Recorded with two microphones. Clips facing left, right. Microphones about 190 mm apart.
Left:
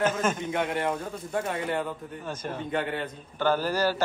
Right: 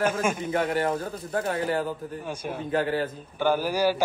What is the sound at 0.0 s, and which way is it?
A man's voice, 10° right (ahead or behind).